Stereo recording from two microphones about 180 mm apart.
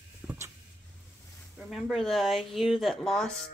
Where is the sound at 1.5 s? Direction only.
Centre (ahead or behind).